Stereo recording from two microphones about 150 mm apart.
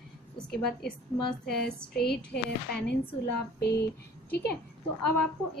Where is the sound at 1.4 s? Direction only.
5° left (ahead or behind).